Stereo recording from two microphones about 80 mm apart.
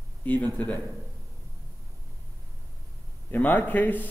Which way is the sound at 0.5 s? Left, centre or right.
Centre.